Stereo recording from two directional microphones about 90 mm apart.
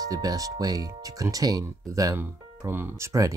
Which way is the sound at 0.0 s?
45° right (ahead or behind).